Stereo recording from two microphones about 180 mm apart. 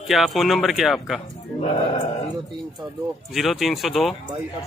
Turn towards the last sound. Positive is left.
turn(degrees=0)  # may be behind; listen again after turning